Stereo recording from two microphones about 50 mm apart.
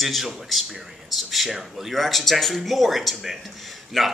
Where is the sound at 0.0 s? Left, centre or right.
Centre.